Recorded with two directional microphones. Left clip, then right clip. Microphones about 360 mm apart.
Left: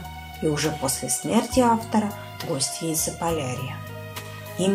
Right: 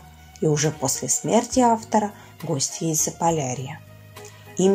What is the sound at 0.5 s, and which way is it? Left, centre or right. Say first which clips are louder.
Speech: right 1 dB; centre.